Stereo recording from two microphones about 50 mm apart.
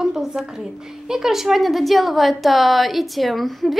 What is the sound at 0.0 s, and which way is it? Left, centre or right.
A woman's voice, centre.